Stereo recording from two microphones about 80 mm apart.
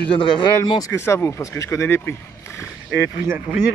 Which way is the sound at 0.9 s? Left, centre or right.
Left.